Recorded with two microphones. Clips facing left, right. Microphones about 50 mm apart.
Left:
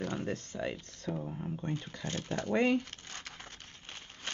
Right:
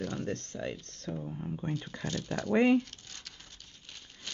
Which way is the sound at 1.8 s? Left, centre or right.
Right.